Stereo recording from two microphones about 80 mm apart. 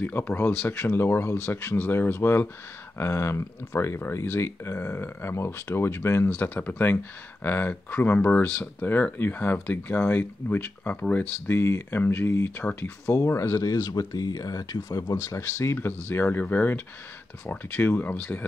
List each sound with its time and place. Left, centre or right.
0.0 s speech: left
11.4 s speech: left
13.0 s speech: left
15.5 s speech: left